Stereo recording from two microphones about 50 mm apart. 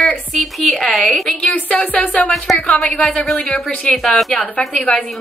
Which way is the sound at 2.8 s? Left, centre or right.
Left.